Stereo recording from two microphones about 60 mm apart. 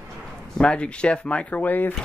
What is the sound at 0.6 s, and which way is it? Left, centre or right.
Speech, centre.